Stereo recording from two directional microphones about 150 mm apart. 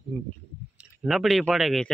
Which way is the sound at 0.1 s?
5° right (ahead or behind).